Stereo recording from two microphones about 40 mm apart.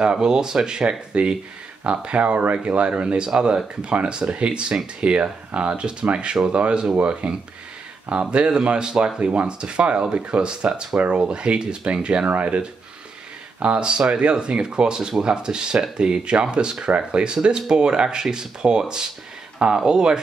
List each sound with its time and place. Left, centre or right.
0.0 s speech: right
13.6 s speech: right